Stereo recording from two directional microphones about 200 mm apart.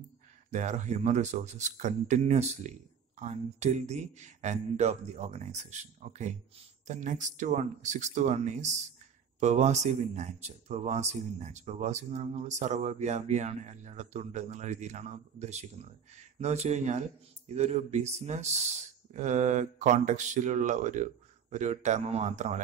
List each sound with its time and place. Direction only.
0.5 s speech: 35° right (ahead or behind)